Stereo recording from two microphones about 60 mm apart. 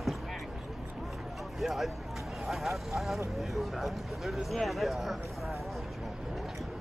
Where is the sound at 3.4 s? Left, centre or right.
Centre.